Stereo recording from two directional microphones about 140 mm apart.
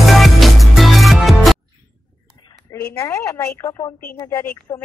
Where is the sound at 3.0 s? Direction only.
20° left (ahead or behind).